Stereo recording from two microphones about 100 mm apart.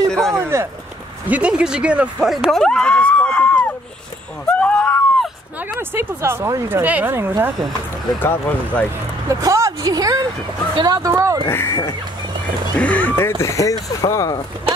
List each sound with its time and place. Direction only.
0.1 s a sound: 5° left (ahead or behind)
0.4 s a sound: 25° right (ahead or behind)
1.3 s speech: 10° right (ahead or behind)
2.5 s a sound: 5° left (ahead or behind)
4.5 s wheeze: 10° left (ahead or behind)
5.8 s speech: 25° right (ahead or behind)
6.8 s speech: 15° right (ahead or behind)
8.2 s speech: 20° left (ahead or behind)
9.3 s a woman's voice: 35° right (ahead or behind)
11.4 s speech: 25° left (ahead or behind)
12.7 s speech: 15° left (ahead or behind)
13.4 s speech: 30° left (ahead or behind)